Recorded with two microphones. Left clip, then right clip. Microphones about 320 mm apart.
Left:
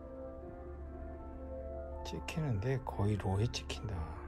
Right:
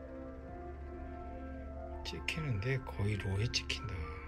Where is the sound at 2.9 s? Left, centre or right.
Centre.